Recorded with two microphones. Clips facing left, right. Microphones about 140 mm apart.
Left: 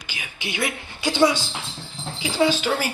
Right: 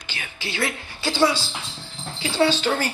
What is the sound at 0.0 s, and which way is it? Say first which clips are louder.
A woman's voice: even; 10° left (ahead or behind).